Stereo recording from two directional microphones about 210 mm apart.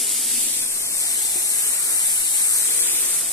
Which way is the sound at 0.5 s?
15° left (ahead or behind).